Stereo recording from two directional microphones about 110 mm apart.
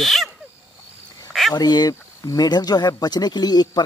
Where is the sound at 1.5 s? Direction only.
35° left (ahead or behind).